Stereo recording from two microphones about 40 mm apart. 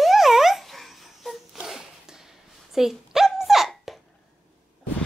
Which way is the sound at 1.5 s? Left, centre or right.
Centre.